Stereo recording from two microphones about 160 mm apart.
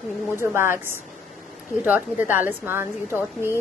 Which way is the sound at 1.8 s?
10° right (ahead or behind).